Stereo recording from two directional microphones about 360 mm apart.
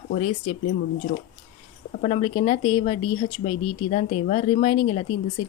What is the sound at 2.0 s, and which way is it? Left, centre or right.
Speech, centre.